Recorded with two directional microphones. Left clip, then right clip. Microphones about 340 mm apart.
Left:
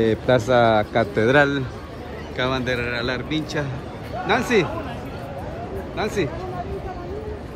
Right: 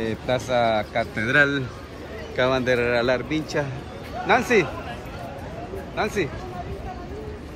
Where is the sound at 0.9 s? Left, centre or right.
Centre.